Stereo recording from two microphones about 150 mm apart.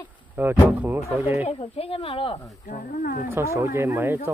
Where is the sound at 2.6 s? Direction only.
70° left (ahead or behind).